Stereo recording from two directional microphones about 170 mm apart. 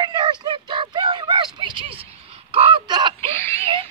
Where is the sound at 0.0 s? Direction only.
25° right (ahead or behind).